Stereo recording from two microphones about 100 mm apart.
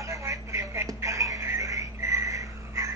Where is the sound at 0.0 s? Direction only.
30° right (ahead or behind).